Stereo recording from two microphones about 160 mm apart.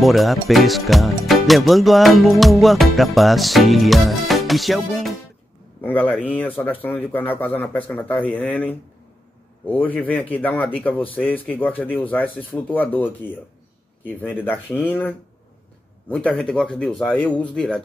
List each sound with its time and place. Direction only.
0.0 s speech: centre (ahead or behind)
5.8 s speech: 10° left (ahead or behind)